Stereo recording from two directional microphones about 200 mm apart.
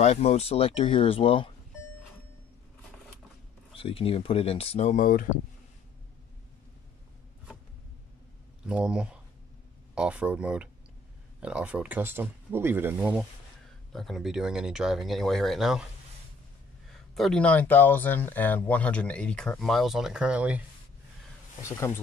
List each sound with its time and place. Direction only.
0.0 s speech: 35° left (ahead or behind)
3.7 s speech: 30° left (ahead or behind)
8.6 s speech: 5° right (ahead or behind)
17.1 s speech: centre (ahead or behind)
21.6 s speech: 15° left (ahead or behind)